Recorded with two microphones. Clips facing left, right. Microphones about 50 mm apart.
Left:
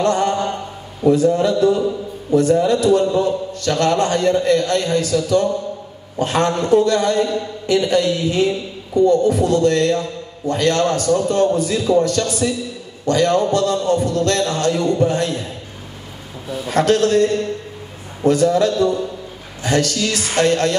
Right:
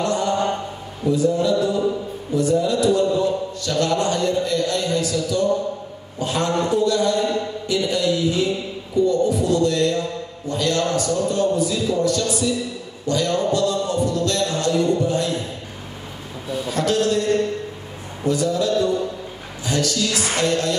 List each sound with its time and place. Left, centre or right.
0.0 s mantra: left
1.0 s a man's voice: left
16.6 s a man's voice: left